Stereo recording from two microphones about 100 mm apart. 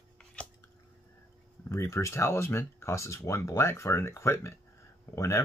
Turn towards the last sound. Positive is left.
turn(degrees=30)  # may be behind; listen again after turning